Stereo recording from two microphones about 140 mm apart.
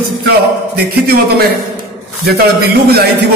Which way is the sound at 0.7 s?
90° right.